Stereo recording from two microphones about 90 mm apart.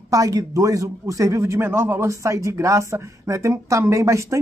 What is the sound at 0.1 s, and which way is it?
A man's voice, 40° right (ahead or behind).